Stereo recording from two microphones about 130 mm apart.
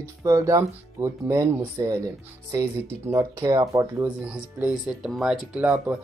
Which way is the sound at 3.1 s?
25° right (ahead or behind).